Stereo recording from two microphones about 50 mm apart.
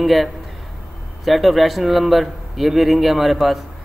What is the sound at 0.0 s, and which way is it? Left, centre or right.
A man's voice, centre.